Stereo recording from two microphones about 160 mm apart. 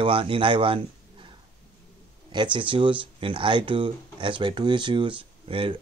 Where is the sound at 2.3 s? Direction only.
30° right (ahead or behind).